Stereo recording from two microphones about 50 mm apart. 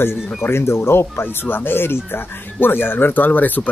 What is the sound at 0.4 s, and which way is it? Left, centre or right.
Speech, left.